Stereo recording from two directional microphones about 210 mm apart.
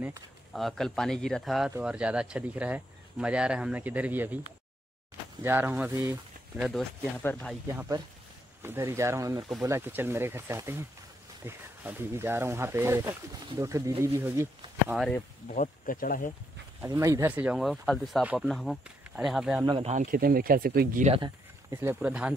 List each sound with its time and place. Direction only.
0.5 s speech: centre (ahead or behind)
5.4 s speech: 10° right (ahead or behind)
6.5 s speech: centre (ahead or behind)
8.6 s speech: 10° right (ahead or behind)
15.5 s speech: 40° left (ahead or behind)
16.8 s speech: 15° right (ahead or behind)
19.6 s speech: 25° right (ahead or behind); by 21.1 s 45° right (ahead or behind)
21.1 s speech: 20° right (ahead or behind)